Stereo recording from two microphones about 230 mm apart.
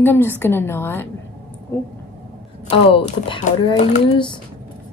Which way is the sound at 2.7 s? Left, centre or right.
Centre.